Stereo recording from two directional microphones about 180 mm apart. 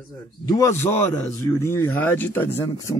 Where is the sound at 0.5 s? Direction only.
15° left (ahead or behind).